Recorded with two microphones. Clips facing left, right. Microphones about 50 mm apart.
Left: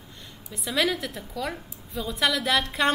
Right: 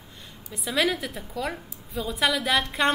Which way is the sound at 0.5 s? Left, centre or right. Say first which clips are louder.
Right 1 dB; centre.